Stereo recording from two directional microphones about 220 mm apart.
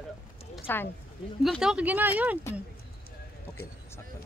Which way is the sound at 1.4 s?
Centre (ahead or behind).